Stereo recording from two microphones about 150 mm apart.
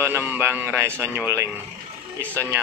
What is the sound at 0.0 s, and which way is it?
A man's voice, 15° right (ahead or behind).